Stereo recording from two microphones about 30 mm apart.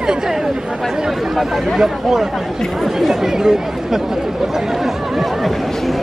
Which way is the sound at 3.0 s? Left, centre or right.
Centre.